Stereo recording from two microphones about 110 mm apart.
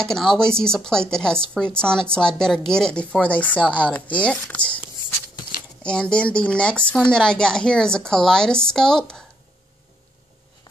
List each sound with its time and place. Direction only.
0.0 s speech: 5° left (ahead or behind)
5.8 s speech: 10° left (ahead or behind)